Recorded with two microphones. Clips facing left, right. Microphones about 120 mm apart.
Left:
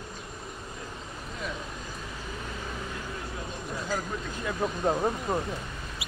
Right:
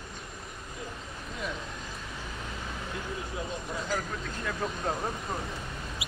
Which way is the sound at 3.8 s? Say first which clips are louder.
Left 3 dB; 10° left (ahead or behind).